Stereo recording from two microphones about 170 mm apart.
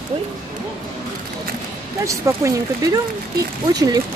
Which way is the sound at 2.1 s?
15° right (ahead or behind).